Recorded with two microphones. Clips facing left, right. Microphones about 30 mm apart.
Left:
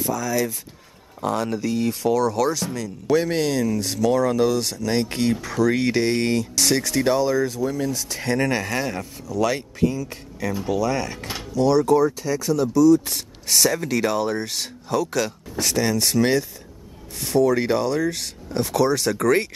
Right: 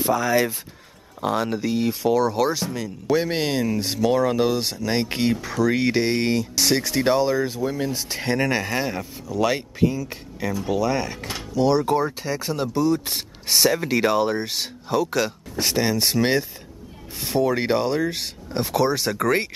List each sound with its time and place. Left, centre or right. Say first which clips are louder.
0.0 s speech: right 3 dB; right
1.2 s speech: even; centre
5.3 s speech: left 3 dB; centre; by 8.4 s right
8.4 s speech: even; centre
11.5 s speech: left 1 dB; centre
11.8 s speech: left 4 dB; right
13.0 s speech: right 1 dB; right